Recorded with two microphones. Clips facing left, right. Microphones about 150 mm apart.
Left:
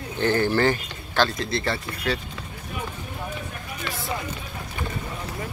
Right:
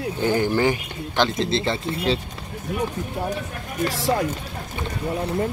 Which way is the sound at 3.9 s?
75° right (ahead or behind).